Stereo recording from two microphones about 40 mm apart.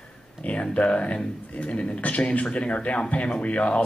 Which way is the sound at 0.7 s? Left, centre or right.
Left.